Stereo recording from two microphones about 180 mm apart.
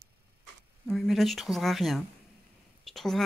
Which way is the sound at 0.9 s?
Centre (ahead or behind).